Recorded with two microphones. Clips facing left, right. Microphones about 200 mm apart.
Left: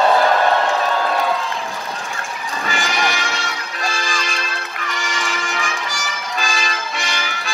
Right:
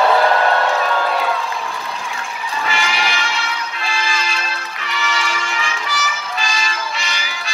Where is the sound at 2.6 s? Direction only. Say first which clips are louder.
Left 1 dB; 50° left (ahead or behind).